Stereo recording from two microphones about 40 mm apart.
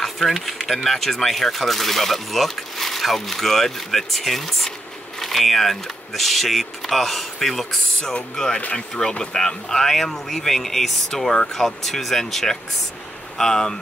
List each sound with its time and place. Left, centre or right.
0.0 s speech: centre
8.0 s speech: centre